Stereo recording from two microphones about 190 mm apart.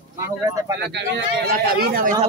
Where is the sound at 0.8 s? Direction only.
60° right (ahead or behind).